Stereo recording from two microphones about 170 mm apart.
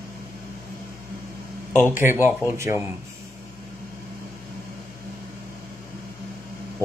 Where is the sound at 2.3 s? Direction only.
15° right (ahead or behind).